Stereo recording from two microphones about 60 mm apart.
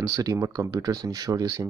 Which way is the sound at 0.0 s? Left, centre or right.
Right.